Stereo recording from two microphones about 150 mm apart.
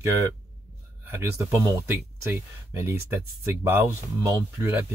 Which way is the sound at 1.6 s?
20° right (ahead or behind).